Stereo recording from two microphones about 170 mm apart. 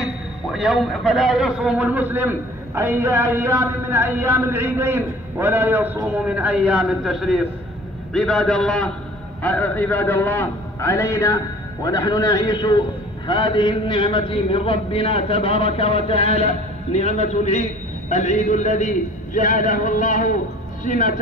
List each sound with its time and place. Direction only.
0.0 s a man's voice: 5° right (ahead or behind); by 21.2 s 50° left (ahead or behind)